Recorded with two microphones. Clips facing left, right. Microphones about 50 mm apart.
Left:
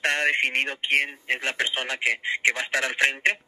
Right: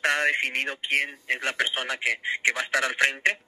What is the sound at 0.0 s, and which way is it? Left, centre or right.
Speech, left.